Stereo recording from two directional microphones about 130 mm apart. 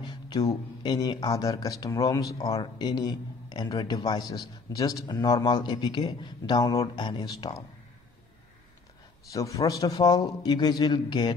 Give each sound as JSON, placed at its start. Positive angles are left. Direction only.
{"t": 0.1, "sound": "a man's voice", "side_deg": 30}
{"t": 9.3, "sound": "a man's voice", "side_deg": 25}